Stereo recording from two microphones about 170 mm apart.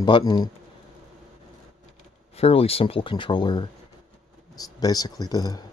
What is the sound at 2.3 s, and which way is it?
Speech, 35° left (ahead or behind).